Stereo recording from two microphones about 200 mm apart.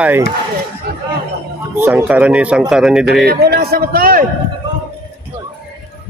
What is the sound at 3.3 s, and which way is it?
Speech, 50° right (ahead or behind).